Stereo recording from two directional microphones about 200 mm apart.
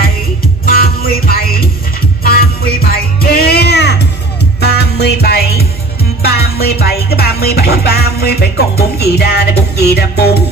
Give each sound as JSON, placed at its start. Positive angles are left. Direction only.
{"t": 0.7, "sound": "music", "side_deg": 45}